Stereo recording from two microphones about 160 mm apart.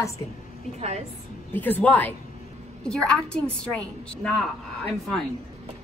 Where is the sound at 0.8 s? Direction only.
45° right (ahead or behind).